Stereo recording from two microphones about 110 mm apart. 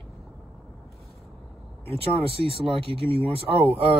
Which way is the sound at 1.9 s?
55° right (ahead or behind).